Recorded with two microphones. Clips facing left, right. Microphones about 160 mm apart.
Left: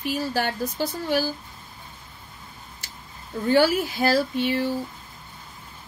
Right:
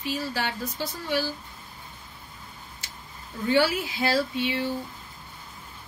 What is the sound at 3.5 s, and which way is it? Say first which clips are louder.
A woman's voice: left 4 dB; 45° left (ahead or behind).